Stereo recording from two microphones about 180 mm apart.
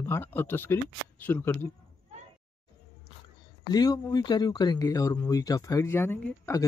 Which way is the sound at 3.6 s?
20° left (ahead or behind).